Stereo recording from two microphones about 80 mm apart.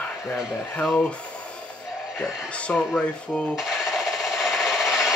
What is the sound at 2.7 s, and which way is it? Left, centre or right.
Speech, centre.